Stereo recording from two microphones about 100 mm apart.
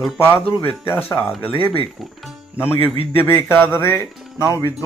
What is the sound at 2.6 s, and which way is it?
Speech, 20° left (ahead or behind).